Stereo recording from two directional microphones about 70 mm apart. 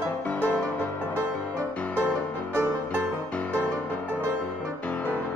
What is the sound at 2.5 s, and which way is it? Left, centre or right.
Music, right.